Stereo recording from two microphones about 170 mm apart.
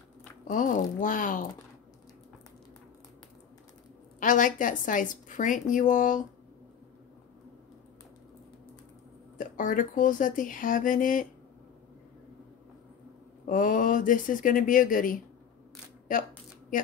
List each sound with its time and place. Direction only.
0.5 s a woman's voice: 50° left (ahead or behind)
4.2 s a woman's voice: 50° left (ahead or behind)
9.4 s a woman's voice: 50° left (ahead or behind)
13.5 s a woman's voice: 50° left (ahead or behind)